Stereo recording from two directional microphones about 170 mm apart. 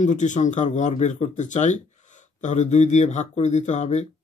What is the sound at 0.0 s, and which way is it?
Speech, 45° left (ahead or behind).